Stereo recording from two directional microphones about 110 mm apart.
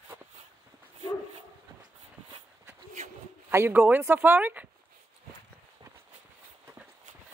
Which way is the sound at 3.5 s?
20° right (ahead or behind).